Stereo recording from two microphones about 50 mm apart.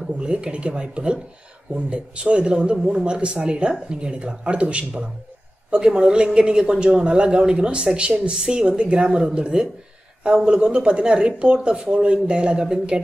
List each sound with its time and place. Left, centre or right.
0.2 s speech: centre